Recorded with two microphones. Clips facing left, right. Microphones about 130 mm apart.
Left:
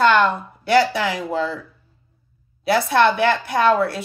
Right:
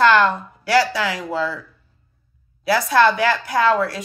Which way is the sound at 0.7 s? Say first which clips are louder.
Left 1 dB; 25° left (ahead or behind).